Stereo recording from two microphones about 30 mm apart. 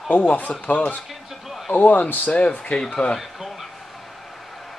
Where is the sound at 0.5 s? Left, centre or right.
Left.